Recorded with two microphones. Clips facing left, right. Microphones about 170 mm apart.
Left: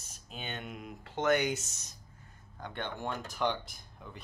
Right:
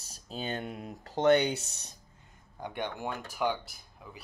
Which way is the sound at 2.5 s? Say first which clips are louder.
Right 3 dB; 15° right (ahead or behind).